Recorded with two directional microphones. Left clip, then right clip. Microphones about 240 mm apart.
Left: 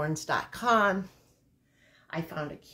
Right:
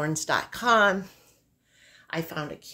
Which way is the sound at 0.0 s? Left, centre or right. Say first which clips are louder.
Right 3 dB; right.